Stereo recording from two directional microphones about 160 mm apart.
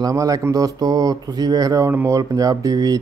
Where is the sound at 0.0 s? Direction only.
20° right (ahead or behind).